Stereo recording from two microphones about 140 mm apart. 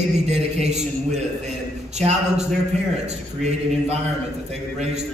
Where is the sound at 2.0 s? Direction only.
50° right (ahead or behind).